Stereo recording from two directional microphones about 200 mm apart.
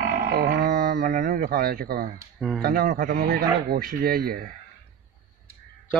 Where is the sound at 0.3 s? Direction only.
50° right (ahead or behind).